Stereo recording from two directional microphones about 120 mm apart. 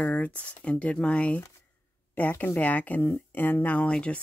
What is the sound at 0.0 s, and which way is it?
Speech, 15° left (ahead or behind).